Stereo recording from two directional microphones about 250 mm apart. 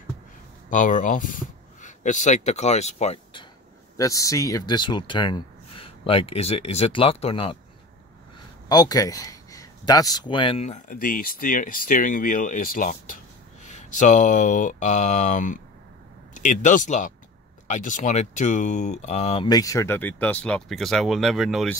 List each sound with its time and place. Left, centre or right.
0.7 s speech: left
3.9 s speech: centre
8.6 s speech: centre